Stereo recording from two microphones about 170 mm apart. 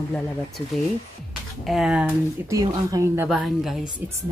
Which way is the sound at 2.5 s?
20° right (ahead or behind).